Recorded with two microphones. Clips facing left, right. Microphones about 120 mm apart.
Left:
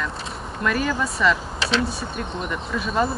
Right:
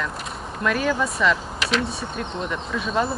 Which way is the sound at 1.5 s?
30° left (ahead or behind).